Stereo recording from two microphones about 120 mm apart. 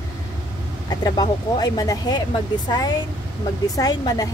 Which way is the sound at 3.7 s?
30° left (ahead or behind).